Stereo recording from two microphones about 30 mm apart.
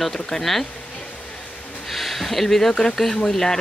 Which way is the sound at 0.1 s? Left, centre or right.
Centre.